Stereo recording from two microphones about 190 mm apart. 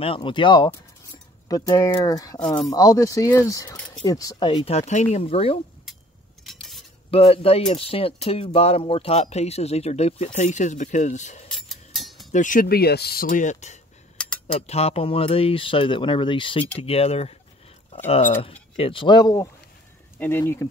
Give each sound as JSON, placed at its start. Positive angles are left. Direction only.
{"t": 0.0, "sound": "speech", "side_deg": 25}
{"t": 2.3, "sound": "speech", "side_deg": 5}
{"t": 2.7, "sound": "speech", "side_deg": 20}
{"t": 3.7, "sound": "a sound", "side_deg": 5}
{"t": 4.0, "sound": "speech", "side_deg": 20}
{"t": 6.4, "sound": "cutlery", "side_deg": 0}
{"t": 7.1, "sound": "speech", "side_deg": 30}
{"t": 11.5, "sound": "music", "side_deg": 0}
{"t": 12.3, "sound": "speech", "side_deg": 40}
{"t": 14.1, "sound": "cutlery", "side_deg": 5}
{"t": 14.7, "sound": "speech", "side_deg": 35}